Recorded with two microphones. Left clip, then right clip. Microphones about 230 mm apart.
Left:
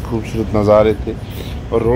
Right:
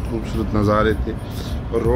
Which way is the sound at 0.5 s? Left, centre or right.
Centre.